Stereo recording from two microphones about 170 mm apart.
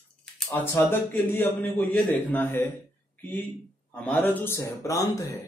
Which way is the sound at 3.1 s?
10° left (ahead or behind).